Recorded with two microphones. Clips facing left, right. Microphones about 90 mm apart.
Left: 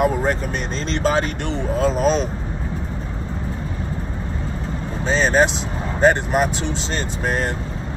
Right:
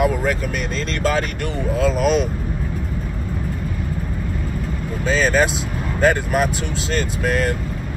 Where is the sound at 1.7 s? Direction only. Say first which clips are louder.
Even; 40° left (ahead or behind).